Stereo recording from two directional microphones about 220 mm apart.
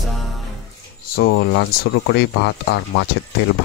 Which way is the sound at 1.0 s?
40° left (ahead or behind).